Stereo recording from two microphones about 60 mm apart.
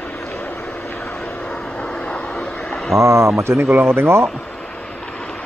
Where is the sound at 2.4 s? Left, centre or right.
Left.